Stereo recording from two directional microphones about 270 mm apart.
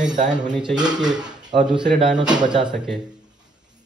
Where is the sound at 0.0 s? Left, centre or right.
Right.